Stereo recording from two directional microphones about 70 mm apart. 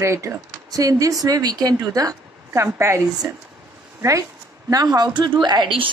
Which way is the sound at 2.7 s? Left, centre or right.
Right.